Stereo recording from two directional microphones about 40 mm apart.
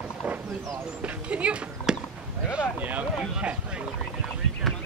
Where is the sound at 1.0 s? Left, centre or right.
Right.